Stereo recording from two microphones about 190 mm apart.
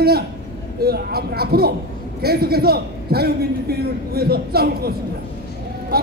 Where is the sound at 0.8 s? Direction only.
55° right (ahead or behind).